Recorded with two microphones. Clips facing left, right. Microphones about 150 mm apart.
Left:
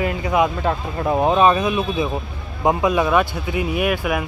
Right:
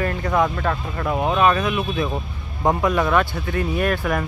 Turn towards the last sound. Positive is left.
turn(degrees=10)  # may be behind; listen again after turning